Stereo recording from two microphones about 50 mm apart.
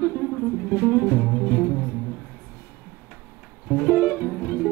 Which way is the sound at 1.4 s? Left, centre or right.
Left.